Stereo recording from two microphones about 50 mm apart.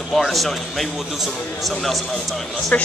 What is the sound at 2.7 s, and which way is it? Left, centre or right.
Speech, left.